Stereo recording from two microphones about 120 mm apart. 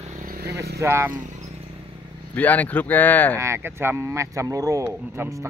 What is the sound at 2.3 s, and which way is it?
A man's voice, 15° left (ahead or behind).